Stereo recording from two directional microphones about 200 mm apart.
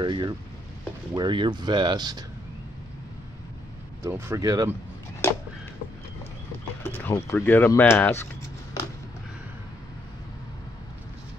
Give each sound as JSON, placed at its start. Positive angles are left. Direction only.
{"t": 0.0, "sound": "speech", "side_deg": -20}
{"t": 4.0, "sound": "speech", "side_deg": -15}
{"t": 6.8, "sound": "speech", "side_deg": 10}